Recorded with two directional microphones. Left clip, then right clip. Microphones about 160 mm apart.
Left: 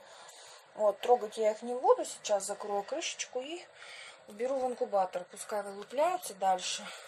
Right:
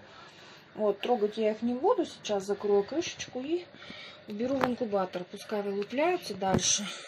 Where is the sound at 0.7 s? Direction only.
15° left (ahead or behind).